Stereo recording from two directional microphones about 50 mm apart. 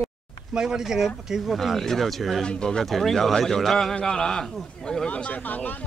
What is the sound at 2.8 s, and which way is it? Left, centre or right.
A man's voice, centre.